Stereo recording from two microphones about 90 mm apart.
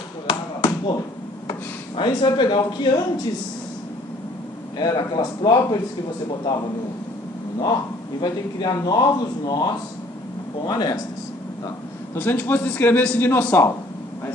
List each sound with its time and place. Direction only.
0.3 s basketball bounce: 60° left (ahead or behind)
2.0 s speech: 60° left (ahead or behind)
4.7 s speech: 50° left (ahead or behind)
8.2 s speech: 50° left (ahead or behind)
10.7 s speech: 45° left (ahead or behind)
12.2 s a man's voice: 20° left (ahead or behind)